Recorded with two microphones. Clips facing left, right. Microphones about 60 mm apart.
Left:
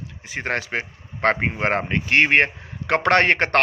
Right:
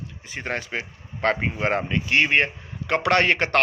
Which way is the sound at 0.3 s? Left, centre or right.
Left.